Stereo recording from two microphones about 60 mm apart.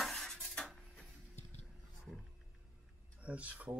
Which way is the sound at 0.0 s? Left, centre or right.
Centre.